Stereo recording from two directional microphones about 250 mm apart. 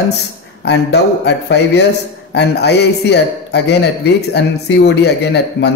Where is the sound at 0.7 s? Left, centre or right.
Left.